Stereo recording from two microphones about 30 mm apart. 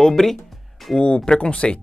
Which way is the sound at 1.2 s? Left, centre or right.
Left.